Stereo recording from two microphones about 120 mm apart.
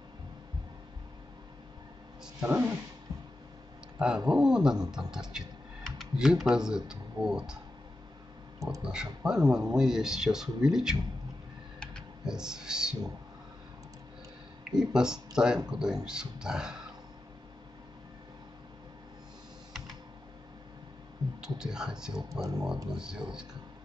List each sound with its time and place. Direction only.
2.4 s speech: 15° right (ahead or behind)
3.1 s a sound: 30° right (ahead or behind)
4.0 s speech: 5° right (ahead or behind)
8.8 s speech: 5° right (ahead or behind)
12.3 s speech: 5° right (ahead or behind)
14.7 s speech: 5° right (ahead or behind)
21.4 s speech: 5° right (ahead or behind)